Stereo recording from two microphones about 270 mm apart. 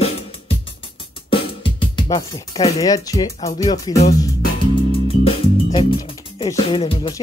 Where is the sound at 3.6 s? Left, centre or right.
Centre.